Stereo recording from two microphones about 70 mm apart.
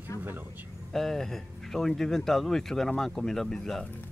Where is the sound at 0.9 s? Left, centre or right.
Centre.